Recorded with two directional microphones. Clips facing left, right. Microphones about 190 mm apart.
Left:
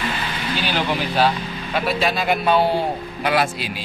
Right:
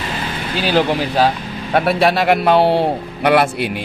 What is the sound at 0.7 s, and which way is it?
A man's voice, 40° right (ahead or behind).